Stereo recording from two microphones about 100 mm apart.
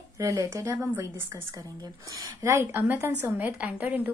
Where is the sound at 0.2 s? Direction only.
30° right (ahead or behind).